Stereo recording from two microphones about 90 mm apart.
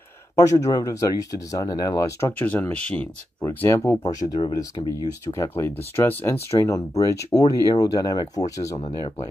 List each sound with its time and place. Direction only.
0.4 s speech: 35° left (ahead or behind)
2.3 s speech: 20° left (ahead or behind)
3.4 s speech: 30° left (ahead or behind)
4.0 s speech: 45° left (ahead or behind)
4.8 s speech: 60° left (ahead or behind)
5.2 s speech: 30° left (ahead or behind); by 8.9 s 45° left (ahead or behind)